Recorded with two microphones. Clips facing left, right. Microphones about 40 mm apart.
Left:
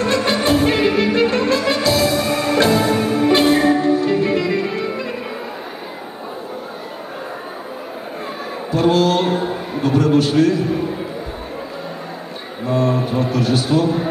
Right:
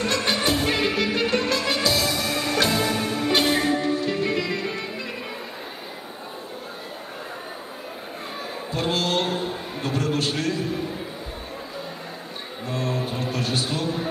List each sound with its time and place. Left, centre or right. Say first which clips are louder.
0.0 s music: left 6 dB; centre
2.2 s music: left 7 dB; left
2.6 s music: left 7 dB; centre
2.9 s music: left 8 dB; left
3.3 s music: left 7 dB; centre
3.5 s music: left 8 dB; centre
3.8 s music: left 8 dB; centre
8.7 s a sound: left 9 dB; centre
10.1 s a man's voice: left 11 dB; centre
12.8 s music: left 7 dB; centre
13.4 s a sound: left 10 dB; centre